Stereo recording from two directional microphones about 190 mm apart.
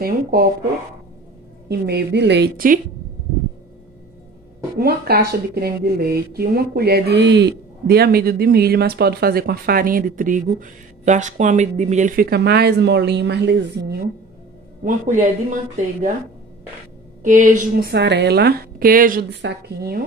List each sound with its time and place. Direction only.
0.0 s a woman's voice: 55° right (ahead or behind)
1.7 s speech: 60° right (ahead or behind)
4.7 s speech: 55° right (ahead or behind)
14.9 s speech: 40° right (ahead or behind)
17.2 s a woman's voice: 40° right (ahead or behind)
17.9 s speech: 65° right (ahead or behind)